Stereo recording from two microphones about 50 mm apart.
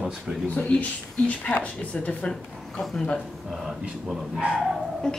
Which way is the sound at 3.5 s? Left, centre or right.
Centre.